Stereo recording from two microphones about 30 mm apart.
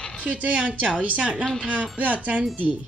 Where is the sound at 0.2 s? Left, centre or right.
Right.